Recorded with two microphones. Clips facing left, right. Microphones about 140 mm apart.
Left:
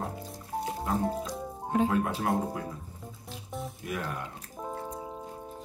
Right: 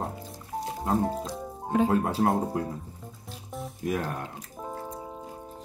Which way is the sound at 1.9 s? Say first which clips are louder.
Right 4 dB; 40° right (ahead or behind).